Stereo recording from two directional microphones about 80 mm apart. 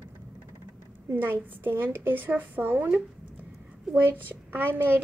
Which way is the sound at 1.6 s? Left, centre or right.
Right.